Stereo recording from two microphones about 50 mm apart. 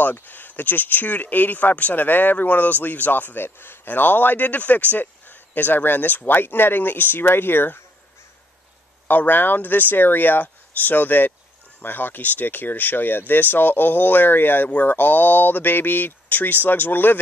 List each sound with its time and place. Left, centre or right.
0.0 s speech: left
9.0 s speech: left